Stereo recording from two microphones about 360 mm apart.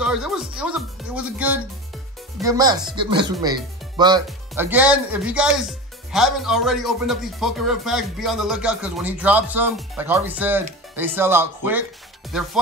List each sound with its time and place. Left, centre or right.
0.0 s speech: centre